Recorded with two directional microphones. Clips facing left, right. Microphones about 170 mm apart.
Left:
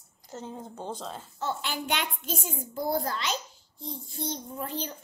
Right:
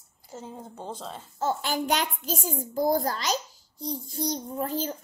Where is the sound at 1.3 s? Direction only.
40° right (ahead or behind).